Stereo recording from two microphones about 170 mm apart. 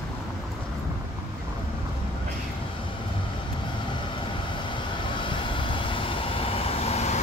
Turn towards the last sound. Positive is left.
turn(degrees=40)  # may be behind; listen again after turning